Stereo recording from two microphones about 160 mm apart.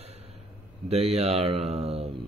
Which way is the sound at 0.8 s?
40° right (ahead or behind).